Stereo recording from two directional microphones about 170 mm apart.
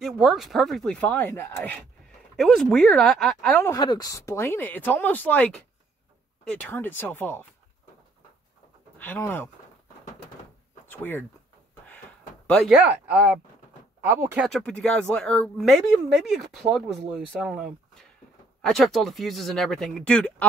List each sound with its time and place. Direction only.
0.0 s speech: centre (ahead or behind)
3.6 s speech: 25° left (ahead or behind)
8.9 s speech: 10° left (ahead or behind)
10.9 s speech: 10° left (ahead or behind)
12.4 s speech: centre (ahead or behind); by 14.4 s 15° right (ahead or behind)
14.4 s speech: 5° left (ahead or behind)